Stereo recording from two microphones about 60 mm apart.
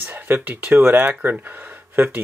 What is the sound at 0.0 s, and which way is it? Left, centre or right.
Speech, right.